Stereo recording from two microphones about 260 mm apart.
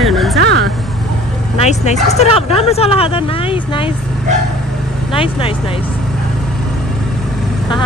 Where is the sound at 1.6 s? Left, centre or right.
Left.